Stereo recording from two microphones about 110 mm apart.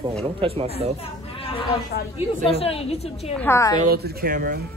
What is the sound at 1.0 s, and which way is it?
Chatter, 60° left (ahead or behind).